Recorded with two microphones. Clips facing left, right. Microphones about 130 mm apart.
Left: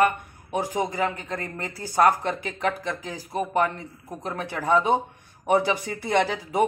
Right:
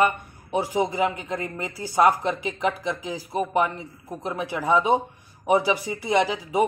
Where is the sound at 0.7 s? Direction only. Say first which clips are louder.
Right 4 dB; 15° right (ahead or behind).